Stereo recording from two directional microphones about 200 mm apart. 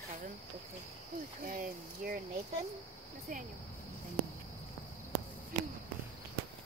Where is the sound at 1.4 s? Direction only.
45° right (ahead or behind).